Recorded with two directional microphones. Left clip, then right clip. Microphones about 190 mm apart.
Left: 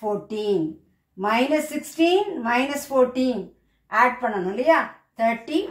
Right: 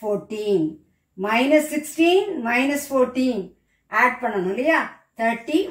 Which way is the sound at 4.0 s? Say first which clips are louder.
Even; 15° right (ahead or behind).